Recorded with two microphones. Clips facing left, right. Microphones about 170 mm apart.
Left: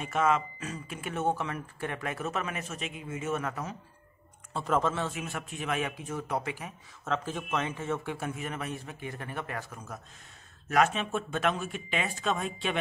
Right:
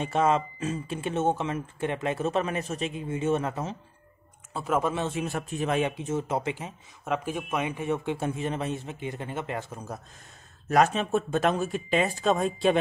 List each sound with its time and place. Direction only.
0.0 s speech: 30° right (ahead or behind)
4.6 s speech: 10° right (ahead or behind)
5.2 s speech: 35° right (ahead or behind)
7.2 s speech: 10° right (ahead or behind); by 12.7 s 40° right (ahead or behind)